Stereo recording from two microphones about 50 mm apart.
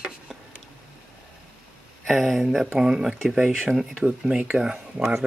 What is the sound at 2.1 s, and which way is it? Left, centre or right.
Speech, centre.